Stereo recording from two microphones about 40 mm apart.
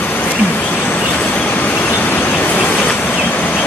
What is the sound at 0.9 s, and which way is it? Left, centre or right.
Vehicle, left.